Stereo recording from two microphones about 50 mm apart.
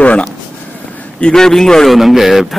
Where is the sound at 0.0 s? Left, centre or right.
Left.